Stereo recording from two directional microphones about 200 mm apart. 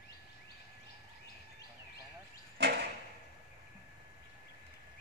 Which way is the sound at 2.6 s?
55° right (ahead or behind).